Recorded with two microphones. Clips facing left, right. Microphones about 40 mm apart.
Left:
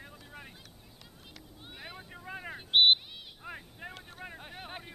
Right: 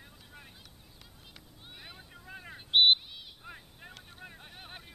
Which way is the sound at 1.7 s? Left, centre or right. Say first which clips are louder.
Left 4 dB; centre.